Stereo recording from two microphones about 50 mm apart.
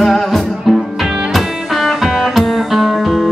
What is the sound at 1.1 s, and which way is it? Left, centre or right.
Music, centre.